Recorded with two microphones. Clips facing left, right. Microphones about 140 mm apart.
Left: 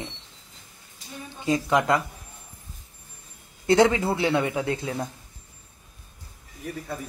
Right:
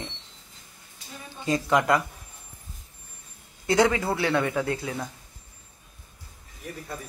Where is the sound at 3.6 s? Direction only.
25° left (ahead or behind).